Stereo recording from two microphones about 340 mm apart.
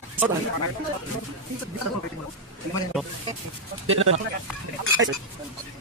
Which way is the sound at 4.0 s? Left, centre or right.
Right.